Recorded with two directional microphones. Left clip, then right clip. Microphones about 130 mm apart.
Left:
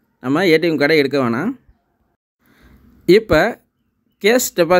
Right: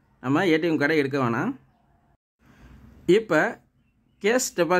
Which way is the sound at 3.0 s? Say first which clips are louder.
Left 8 dB; 30° left (ahead or behind).